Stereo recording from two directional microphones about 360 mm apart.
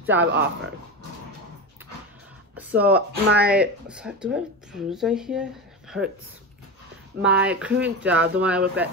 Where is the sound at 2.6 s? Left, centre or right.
Centre.